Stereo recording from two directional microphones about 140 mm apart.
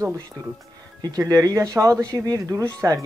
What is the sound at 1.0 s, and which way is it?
Speech, 25° right (ahead or behind).